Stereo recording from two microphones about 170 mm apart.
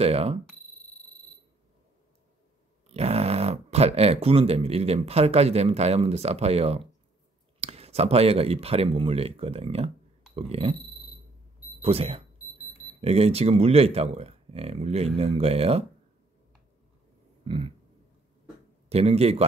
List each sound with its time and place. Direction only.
0.0 s speech: 35° right (ahead or behind)
2.9 s speech: 35° right (ahead or behind)
11.8 s speech: 35° right (ahead or behind)
17.5 s speech: 35° right (ahead or behind)
18.9 s speech: 35° right (ahead or behind)